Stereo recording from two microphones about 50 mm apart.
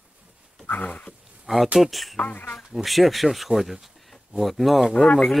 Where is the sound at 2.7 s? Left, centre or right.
Centre.